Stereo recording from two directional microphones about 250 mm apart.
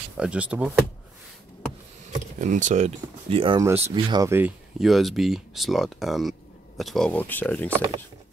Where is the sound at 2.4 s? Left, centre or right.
Right; by 7.7 s centre.